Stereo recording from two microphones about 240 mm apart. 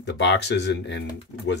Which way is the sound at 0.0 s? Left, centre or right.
Left.